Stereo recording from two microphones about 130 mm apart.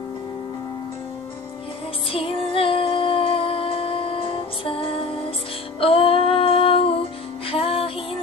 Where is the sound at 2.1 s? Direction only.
45° left (ahead or behind).